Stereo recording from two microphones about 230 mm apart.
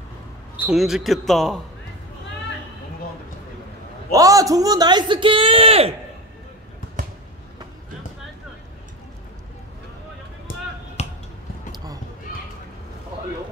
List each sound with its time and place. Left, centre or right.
0.6 s a man's voice: centre
4.1 s speech: centre
11.0 s a sound: left